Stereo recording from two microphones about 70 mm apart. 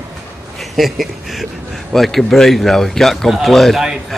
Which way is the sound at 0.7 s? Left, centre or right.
Centre.